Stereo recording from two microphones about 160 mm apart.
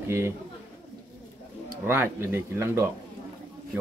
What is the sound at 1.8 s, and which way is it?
Speech, 15° right (ahead or behind).